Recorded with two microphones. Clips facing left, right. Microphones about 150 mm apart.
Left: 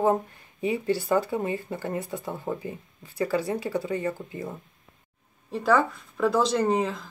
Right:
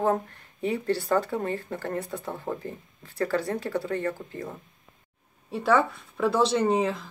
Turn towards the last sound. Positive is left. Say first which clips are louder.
# right 1 dB
turn(degrees=0)  # may be behind; listen again after turning